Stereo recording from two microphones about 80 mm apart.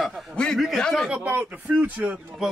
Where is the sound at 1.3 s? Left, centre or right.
Centre.